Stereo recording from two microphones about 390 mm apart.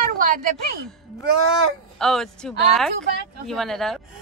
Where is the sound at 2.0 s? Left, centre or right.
Centre.